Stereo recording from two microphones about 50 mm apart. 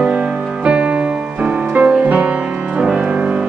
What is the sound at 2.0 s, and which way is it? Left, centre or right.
Music, right.